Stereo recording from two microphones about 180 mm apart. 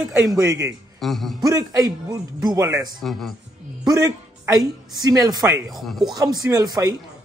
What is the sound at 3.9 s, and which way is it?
A woman's voice, 20° right (ahead or behind).